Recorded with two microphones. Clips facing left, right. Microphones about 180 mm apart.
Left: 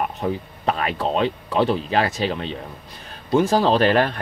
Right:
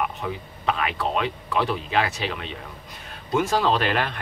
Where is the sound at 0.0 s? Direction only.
40° left (ahead or behind).